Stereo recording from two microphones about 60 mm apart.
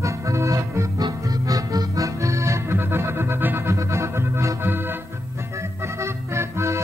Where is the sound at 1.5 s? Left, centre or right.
Right.